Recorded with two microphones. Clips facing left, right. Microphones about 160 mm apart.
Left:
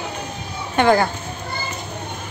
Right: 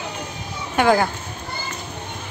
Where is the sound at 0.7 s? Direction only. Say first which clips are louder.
Left 1 dB; 5° right (ahead or behind).